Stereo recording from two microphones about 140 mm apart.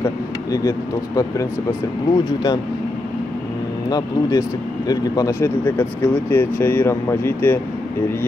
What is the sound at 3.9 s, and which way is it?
Speech, 30° left (ahead or behind).